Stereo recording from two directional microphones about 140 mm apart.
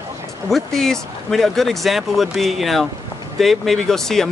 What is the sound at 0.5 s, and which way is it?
Speech, centre (ahead or behind).